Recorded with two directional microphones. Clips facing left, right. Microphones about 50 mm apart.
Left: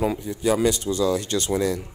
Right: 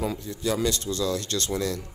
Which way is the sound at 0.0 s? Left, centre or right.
Centre.